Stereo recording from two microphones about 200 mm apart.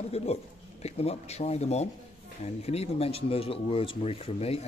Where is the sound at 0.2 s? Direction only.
30° left (ahead or behind).